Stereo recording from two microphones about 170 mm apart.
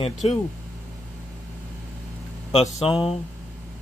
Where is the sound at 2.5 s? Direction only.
35° left (ahead or behind).